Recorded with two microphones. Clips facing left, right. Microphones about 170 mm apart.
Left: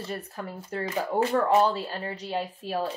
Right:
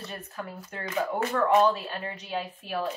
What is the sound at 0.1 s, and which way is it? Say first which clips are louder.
Speech: left 3 dB; 35° left (ahead or behind).